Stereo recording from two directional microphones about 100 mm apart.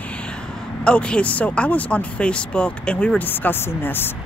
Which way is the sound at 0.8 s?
10° left (ahead or behind).